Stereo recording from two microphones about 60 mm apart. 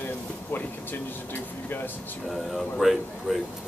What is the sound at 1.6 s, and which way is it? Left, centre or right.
Speech, left.